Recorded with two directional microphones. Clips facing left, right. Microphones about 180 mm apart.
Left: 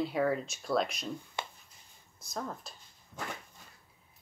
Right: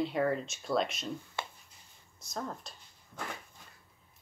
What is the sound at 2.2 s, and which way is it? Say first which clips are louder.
Speech: even; centre (ahead or behind).